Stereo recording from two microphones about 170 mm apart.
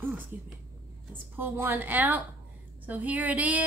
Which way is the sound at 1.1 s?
10° right (ahead or behind).